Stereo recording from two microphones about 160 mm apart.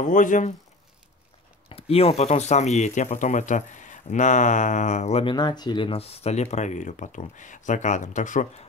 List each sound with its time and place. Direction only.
0.0 s speech: 55° left (ahead or behind)
1.7 s speech: 40° left (ahead or behind)
5.3 s speech: 25° left (ahead or behind); by 8.5 s 50° left (ahead or behind)